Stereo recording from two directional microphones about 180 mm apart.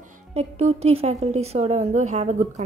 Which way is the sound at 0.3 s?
35° right (ahead or behind).